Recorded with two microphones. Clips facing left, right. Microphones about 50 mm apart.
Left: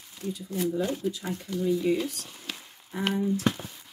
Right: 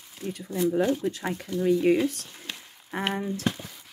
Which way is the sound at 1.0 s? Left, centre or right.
Right.